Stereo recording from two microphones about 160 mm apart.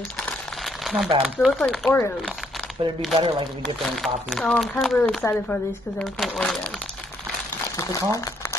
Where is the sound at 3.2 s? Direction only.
35° right (ahead or behind).